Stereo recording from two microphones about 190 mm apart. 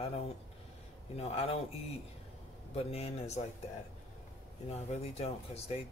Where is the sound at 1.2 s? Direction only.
30° left (ahead or behind).